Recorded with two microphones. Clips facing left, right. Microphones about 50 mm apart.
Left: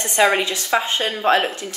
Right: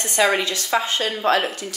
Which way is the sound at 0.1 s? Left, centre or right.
Left.